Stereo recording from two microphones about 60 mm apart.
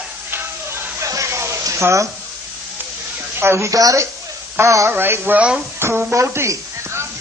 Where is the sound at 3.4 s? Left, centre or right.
Right.